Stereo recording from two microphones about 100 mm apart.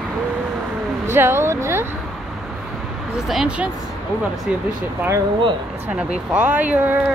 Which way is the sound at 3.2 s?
5° right (ahead or behind).